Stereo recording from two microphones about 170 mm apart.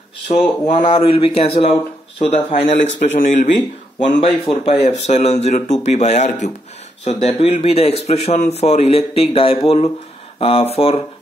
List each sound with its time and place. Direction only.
0.3 s speech: 45° left (ahead or behind)
0.9 s speech: 35° left (ahead or behind)